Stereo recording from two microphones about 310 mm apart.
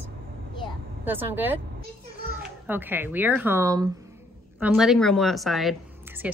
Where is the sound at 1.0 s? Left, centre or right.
Centre.